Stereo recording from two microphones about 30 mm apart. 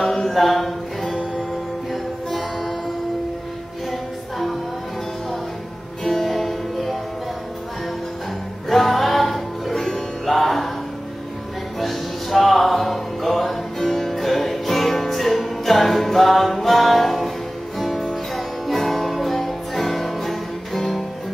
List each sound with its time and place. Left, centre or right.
0.0 s music: centre
6.0 s music: centre
8.6 s music: centre
11.8 s music: centre